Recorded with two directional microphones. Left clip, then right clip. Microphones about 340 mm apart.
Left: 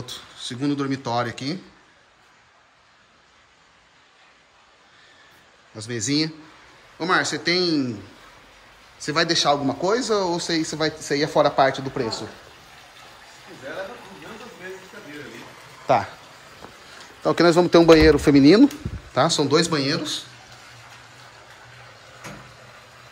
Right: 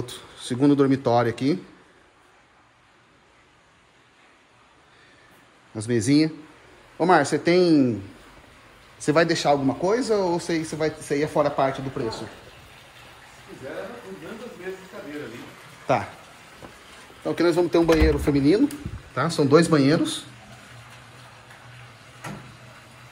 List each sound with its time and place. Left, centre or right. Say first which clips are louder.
0.0 s speech: left 2 dB; centre
5.8 s speech: right 3 dB; centre
9.0 s speech: even; centre
15.9 s speech: left 4 dB; centre
17.2 s a man's voice: left 4 dB; centre
19.1 s speech: even; centre